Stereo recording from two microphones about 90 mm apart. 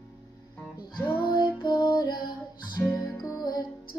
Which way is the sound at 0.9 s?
55° left (ahead or behind).